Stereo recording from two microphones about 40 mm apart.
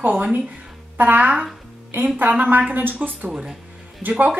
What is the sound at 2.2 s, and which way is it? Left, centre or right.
Speech, right.